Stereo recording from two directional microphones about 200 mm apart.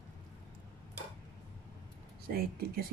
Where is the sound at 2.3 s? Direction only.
50° right (ahead or behind).